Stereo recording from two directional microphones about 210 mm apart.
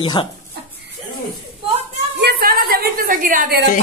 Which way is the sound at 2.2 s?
45° right (ahead or behind).